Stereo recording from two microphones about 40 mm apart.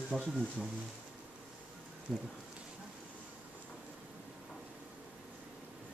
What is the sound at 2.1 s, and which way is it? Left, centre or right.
Speech, centre.